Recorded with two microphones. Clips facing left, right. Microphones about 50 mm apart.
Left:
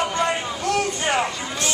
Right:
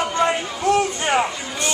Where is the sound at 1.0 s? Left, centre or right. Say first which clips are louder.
Right 2 dB; centre.